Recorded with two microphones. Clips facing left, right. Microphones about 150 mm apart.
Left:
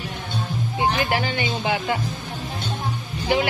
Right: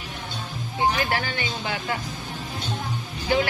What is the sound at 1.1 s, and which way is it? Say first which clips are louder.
Speech: left 4 dB; 15° left (ahead or behind).